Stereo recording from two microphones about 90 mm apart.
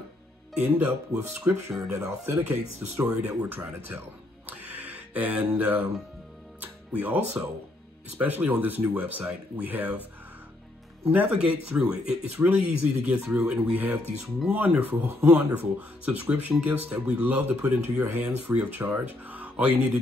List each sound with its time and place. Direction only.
0.6 s speech: 10° right (ahead or behind)
1.4 s speech: 30° right (ahead or behind)
4.5 s a sound: 20° right (ahead or behind)
5.6 s speech: 20° right (ahead or behind)
11.1 s speech: 20° right (ahead or behind)